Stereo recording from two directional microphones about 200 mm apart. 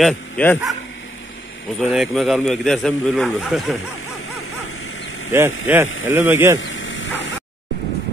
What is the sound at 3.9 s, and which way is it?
Bow-wow, 90° left.